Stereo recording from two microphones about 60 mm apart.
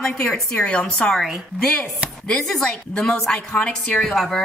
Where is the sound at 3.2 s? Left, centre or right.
Centre.